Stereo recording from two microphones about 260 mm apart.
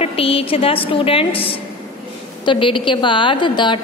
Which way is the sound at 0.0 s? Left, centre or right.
Left.